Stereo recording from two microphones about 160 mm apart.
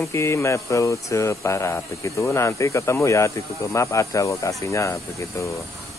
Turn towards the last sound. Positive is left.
turn(degrees=20)  # may be behind; listen again after turning